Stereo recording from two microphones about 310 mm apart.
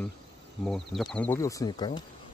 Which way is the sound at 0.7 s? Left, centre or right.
Centre.